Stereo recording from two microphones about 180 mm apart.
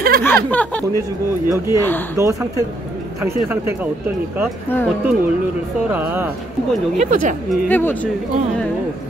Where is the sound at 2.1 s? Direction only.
20° right (ahead or behind).